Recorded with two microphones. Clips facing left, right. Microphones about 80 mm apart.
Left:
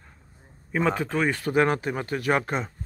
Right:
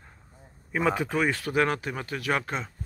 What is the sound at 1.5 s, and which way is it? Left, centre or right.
Speech, left.